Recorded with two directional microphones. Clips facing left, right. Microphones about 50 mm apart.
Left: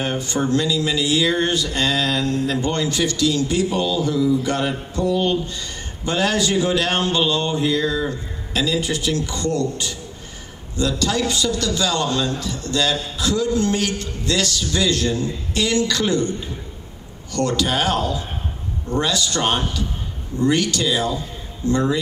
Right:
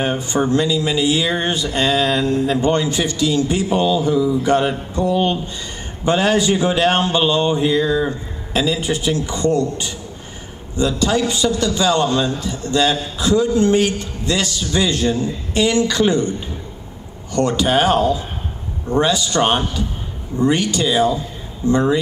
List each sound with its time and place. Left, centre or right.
0.0 s speech: right
17.3 s speech: right